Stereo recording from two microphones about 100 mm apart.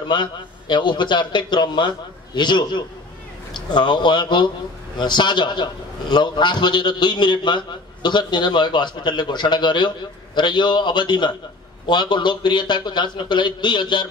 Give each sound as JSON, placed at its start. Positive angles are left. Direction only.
{"t": 0.1, "sound": "a man's voice", "side_deg": 50}